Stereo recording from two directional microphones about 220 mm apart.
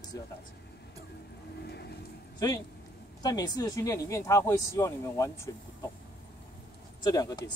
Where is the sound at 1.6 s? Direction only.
50° left (ahead or behind).